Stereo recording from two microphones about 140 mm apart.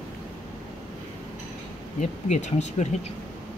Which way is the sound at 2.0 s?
55° left (ahead or behind).